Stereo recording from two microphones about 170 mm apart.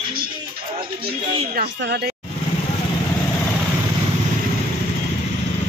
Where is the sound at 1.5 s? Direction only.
75° right (ahead or behind).